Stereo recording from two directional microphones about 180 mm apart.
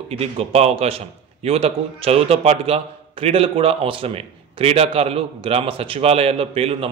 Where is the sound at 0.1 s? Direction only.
35° right (ahead or behind).